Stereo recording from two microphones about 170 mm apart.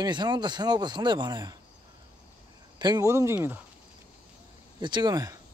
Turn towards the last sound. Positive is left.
turn(degrees=-20)  # may be behind; listen again after turning